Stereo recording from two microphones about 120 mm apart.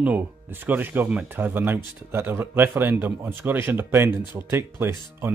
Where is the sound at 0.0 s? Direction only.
15° right (ahead or behind).